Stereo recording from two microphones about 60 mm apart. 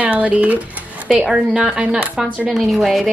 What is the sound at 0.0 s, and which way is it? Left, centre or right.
A woman's voice, right.